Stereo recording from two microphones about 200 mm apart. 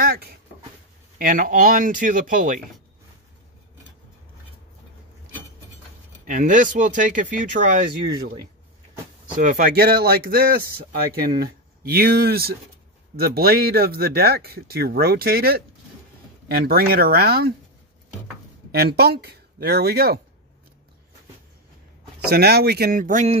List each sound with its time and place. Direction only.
0.0 s a sound: 50° right (ahead or behind)
1.1 s speech: 45° right (ahead or behind)
6.2 s speech: 40° right (ahead or behind)
9.4 s speech: 40° right (ahead or behind)
18.7 s speech: 55° right (ahead or behind)
22.3 s speech: 50° right (ahead or behind); by 23.4 s 35° right (ahead or behind)